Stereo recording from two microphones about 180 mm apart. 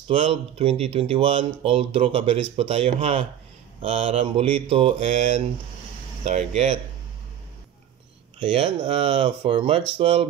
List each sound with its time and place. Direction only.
0.1 s speech: 35° right (ahead or behind)
8.4 s speech: 30° right (ahead or behind)